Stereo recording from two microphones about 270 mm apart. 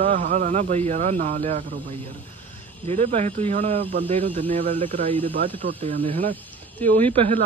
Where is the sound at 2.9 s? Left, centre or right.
Right.